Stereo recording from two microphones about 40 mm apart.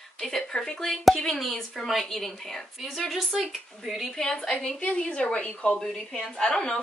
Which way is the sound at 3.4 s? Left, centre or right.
Centre.